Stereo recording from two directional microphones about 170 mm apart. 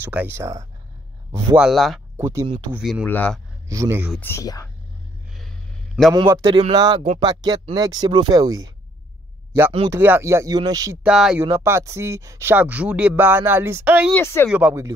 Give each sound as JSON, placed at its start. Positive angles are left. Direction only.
{"t": 0.0, "sound": "speech", "side_deg": -10}
{"t": 1.6, "sound": "speech", "side_deg": 0}
{"t": 2.1, "sound": "speech", "side_deg": -15}
{"t": 2.8, "sound": "speech", "side_deg": 0}
{"t": 3.6, "sound": "a man's voice", "side_deg": -20}
{"t": 4.2, "sound": "speech", "side_deg": 15}
{"t": 6.2, "sound": "speech", "side_deg": -20}
{"t": 9.9, "sound": "speech", "side_deg": -10}
{"t": 11.1, "sound": "speech", "side_deg": -5}
{"t": 11.4, "sound": "speech", "side_deg": -15}
{"t": 14.1, "sound": "speech", "side_deg": 15}
{"t": 14.5, "sound": "speech", "side_deg": -5}